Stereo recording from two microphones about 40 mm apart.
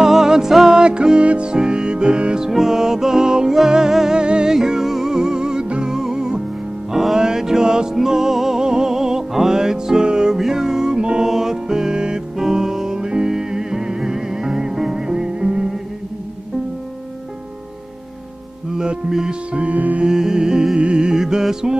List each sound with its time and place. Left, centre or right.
0.0 s music: centre
0.7 s music: right
2.4 s music: centre
6.9 s music: centre
11.2 s music: centre
18.8 s music: centre
19.5 s music: right
20.0 s music: centre